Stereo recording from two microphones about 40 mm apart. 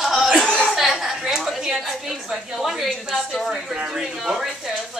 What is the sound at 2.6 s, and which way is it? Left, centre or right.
Speech, centre.